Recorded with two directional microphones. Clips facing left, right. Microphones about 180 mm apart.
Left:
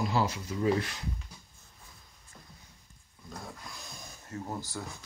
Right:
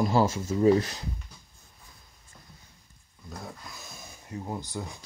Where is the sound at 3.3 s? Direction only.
5° right (ahead or behind).